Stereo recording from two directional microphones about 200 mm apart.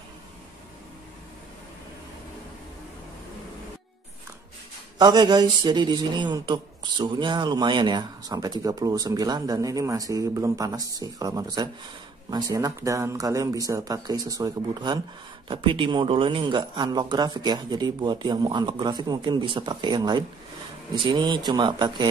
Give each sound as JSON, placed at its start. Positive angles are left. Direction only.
{"t": 4.9, "sound": "a man's voice", "side_deg": -20}
{"t": 21.3, "sound": "a man's voice", "side_deg": -20}